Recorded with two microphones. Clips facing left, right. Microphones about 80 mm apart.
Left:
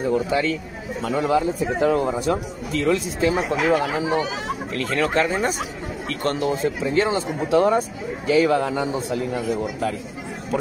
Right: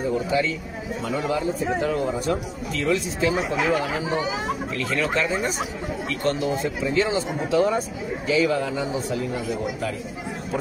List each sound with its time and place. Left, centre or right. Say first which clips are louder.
0.3 s speech: left 1 dB; left